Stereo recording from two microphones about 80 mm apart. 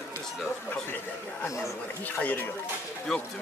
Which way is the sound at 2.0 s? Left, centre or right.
Left.